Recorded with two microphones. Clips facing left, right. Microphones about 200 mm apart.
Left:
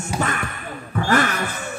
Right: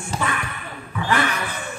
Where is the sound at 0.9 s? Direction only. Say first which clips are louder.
Left 3 dB; 45° left (ahead or behind).